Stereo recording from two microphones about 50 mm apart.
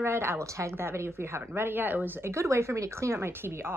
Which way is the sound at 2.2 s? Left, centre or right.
Right.